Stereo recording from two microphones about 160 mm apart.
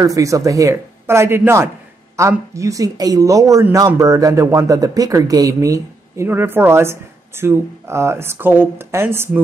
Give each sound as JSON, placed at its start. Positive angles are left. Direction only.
{"t": 0.0, "sound": "speech", "side_deg": -20}